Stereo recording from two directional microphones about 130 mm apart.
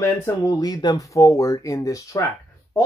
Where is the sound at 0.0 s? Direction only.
25° left (ahead or behind).